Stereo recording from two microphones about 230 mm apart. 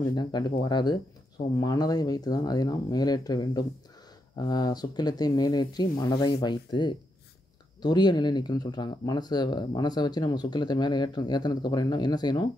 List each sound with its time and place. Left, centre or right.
0.1 s speech: centre